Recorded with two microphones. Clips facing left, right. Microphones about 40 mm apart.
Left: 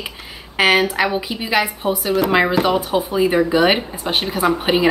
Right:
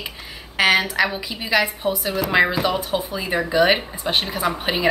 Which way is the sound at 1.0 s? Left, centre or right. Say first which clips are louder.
Left 2 dB; left.